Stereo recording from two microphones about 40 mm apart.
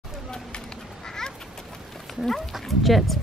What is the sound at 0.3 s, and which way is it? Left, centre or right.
Children playing, centre.